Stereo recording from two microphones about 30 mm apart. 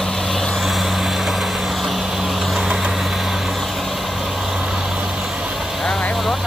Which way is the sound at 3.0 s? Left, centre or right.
Centre.